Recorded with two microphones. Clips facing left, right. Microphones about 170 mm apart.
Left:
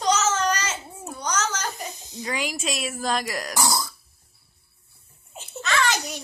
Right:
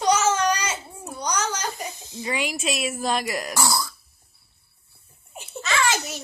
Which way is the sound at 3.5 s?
20° left (ahead or behind).